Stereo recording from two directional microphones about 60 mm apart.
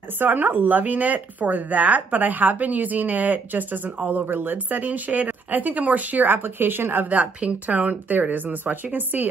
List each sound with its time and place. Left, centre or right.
0.2 s speech: right